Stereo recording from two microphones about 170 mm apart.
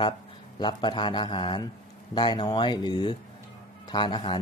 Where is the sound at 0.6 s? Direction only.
25° left (ahead or behind).